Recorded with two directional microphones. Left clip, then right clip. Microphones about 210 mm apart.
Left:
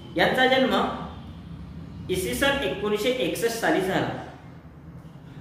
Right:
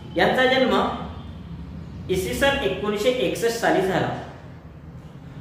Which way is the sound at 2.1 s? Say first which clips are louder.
Right 3 dB; 15° left (ahead or behind).